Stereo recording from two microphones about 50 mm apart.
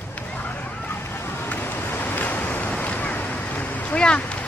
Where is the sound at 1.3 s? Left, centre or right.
Left.